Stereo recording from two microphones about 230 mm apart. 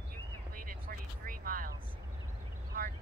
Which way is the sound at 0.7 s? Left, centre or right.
Right.